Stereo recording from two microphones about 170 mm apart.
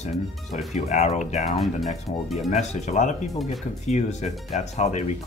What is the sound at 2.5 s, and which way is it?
Speech, 40° left (ahead or behind).